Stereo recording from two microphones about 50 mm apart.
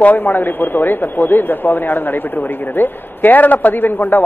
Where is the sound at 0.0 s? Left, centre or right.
Left.